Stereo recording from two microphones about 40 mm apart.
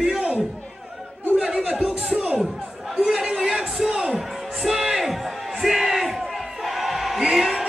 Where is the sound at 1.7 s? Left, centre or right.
Right.